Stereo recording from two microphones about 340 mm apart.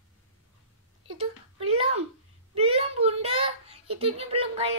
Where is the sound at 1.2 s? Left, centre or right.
Centre.